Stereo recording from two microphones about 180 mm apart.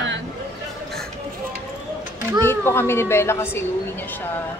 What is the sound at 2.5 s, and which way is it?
A woman's voice, 15° left (ahead or behind).